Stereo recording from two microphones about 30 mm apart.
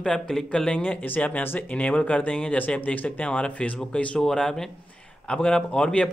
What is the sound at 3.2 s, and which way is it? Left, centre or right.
A man's voice, left.